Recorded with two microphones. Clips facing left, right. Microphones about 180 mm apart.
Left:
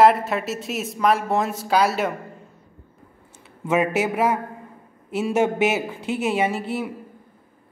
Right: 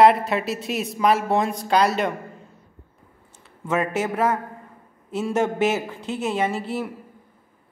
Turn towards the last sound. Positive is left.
turn(degrees=0)  # may be behind; listen again after turning